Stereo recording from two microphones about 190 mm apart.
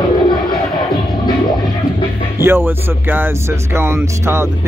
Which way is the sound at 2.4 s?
10° right (ahead or behind).